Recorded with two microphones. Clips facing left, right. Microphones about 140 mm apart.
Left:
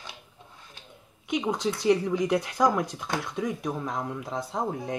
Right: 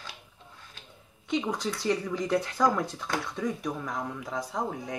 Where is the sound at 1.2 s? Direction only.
15° left (ahead or behind).